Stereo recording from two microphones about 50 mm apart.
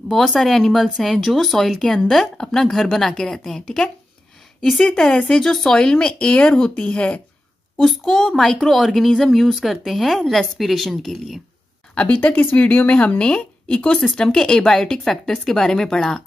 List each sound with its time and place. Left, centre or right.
0.3 s speech: centre
4.9 s speech: centre
7.8 s speech: centre
11.9 s a woman's voice: left